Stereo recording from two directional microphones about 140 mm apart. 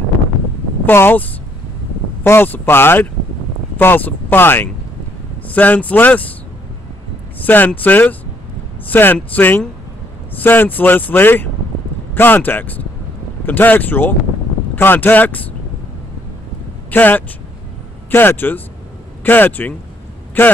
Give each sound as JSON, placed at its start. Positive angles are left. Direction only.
{"t": 0.8, "sound": "speech", "side_deg": 15}
{"t": 7.4, "sound": "speech", "side_deg": 15}
{"t": 16.9, "sound": "speech", "side_deg": 15}